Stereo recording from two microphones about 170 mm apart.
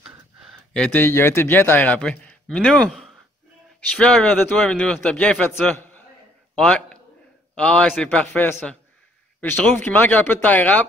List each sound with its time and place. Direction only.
0.7 s a man's voice: 10° left (ahead or behind)
6.5 s a sound: 5° left (ahead or behind)
7.5 s a man's voice: 5° left (ahead or behind)